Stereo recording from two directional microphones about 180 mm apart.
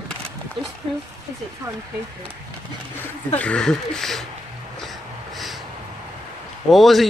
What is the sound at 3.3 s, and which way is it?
Speech, 5° left (ahead or behind).